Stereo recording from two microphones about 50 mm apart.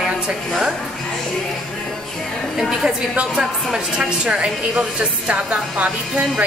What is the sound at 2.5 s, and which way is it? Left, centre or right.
Speech, centre.